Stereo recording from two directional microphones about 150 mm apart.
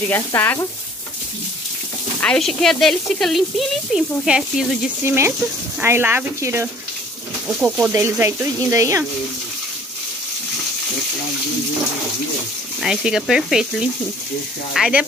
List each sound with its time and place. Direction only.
0.1 s speech: 15° left (ahead or behind)
2.1 s speech: 5° left (ahead or behind)
5.0 s speech: 15° right (ahead or behind)
7.4 s speech: 5° right (ahead or behind); by 9.0 s 20° right (ahead or behind)
12.8 s speech: 5° right (ahead or behind)